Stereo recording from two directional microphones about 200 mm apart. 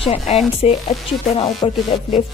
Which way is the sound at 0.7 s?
30° left (ahead or behind).